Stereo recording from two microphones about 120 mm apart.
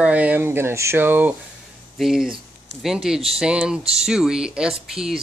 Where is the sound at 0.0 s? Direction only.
10° right (ahead or behind).